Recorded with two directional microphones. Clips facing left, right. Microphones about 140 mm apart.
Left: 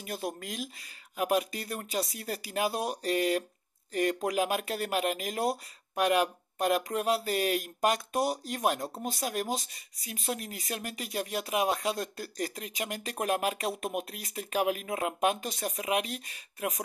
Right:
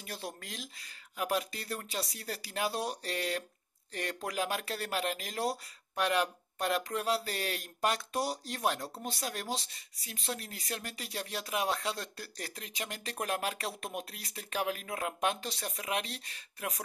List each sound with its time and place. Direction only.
0.0 s speech: 20° left (ahead or behind)